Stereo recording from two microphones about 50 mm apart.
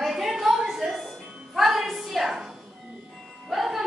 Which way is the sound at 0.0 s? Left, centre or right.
Centre.